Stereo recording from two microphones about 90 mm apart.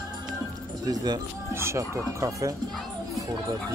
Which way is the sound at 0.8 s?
45° right (ahead or behind).